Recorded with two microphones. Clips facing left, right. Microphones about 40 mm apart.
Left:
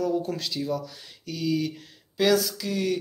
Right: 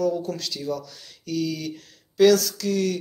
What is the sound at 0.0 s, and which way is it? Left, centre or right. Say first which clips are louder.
A man's voice: right 2 dB; centre.